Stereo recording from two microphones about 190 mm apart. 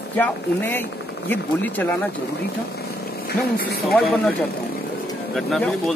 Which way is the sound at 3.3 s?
55° left (ahead or behind).